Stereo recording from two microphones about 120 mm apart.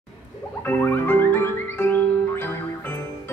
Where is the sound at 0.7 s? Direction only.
20° left (ahead or behind).